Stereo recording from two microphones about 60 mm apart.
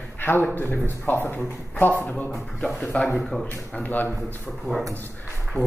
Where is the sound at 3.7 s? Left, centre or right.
Left.